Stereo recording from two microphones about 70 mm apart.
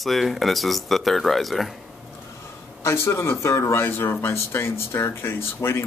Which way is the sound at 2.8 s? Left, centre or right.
Left.